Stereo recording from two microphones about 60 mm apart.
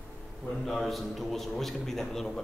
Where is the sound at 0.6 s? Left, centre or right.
Centre.